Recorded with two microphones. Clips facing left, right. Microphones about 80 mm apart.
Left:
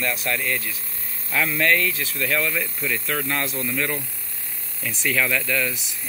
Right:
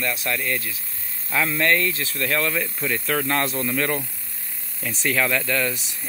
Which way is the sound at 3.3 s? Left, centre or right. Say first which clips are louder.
Right 3 dB; right.